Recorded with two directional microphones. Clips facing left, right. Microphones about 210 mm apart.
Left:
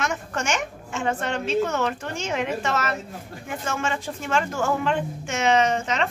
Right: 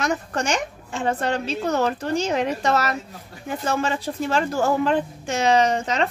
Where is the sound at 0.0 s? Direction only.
35° right (ahead or behind).